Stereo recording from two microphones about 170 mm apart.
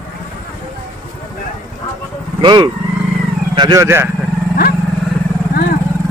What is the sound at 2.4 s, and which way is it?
Speech, 25° right (ahead or behind).